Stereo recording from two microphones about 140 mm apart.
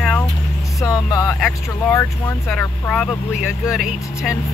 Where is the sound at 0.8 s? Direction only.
25° left (ahead or behind).